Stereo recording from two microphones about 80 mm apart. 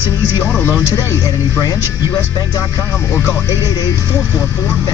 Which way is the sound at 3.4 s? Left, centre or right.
Left.